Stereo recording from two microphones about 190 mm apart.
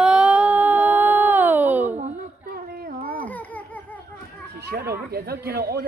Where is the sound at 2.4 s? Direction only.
50° right (ahead or behind).